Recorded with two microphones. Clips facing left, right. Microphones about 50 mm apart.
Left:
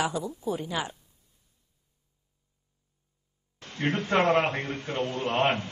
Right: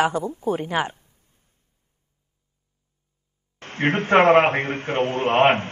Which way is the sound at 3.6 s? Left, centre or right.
Right.